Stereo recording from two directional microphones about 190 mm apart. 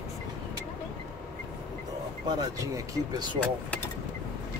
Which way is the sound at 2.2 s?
20° right (ahead or behind).